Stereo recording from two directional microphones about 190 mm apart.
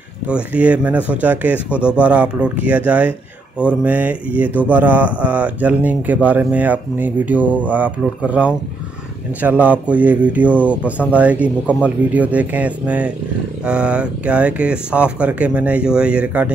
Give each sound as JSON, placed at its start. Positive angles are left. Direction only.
{"t": 0.3, "sound": "speech", "side_deg": -5}